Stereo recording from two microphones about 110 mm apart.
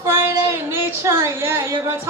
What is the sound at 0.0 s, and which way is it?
A woman's voice, 25° right (ahead or behind).